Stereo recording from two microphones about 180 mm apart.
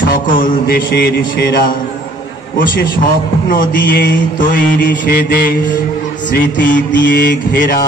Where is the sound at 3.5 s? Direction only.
50° left (ahead or behind).